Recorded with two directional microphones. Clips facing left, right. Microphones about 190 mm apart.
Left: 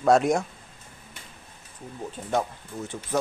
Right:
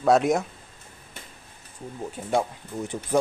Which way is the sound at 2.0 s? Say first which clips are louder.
Right 2 dB; 10° right (ahead or behind).